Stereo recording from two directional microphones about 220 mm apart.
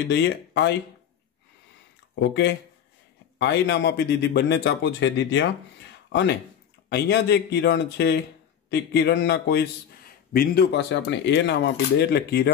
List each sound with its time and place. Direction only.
0.1 s a man's voice: 50° left (ahead or behind)
2.1 s a man's voice: 50° left (ahead or behind)
6.9 s a man's voice: 50° left (ahead or behind)